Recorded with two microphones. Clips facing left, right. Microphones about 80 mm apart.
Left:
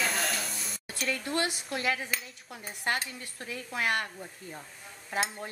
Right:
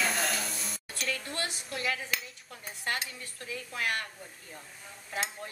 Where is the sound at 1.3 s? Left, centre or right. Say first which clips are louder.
Left 5 dB; centre.